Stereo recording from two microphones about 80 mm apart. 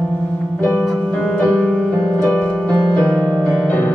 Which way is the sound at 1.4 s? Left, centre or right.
Centre.